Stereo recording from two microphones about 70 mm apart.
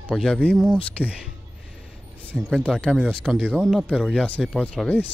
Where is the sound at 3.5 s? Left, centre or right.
Centre.